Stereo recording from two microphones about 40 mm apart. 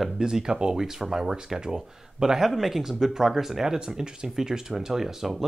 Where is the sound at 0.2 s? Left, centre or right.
Centre.